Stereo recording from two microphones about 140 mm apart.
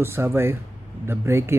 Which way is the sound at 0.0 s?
15° right (ahead or behind).